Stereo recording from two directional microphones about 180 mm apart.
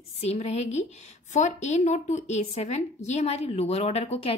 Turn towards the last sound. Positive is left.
turn(degrees=35)  # may be behind; listen again after turning